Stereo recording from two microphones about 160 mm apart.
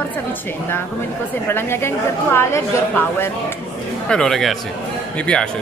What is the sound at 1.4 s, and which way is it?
A woman's voice, 15° left (ahead or behind).